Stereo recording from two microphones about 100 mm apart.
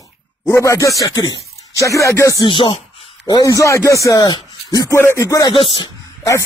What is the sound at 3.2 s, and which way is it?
Speech, 35° left (ahead or behind).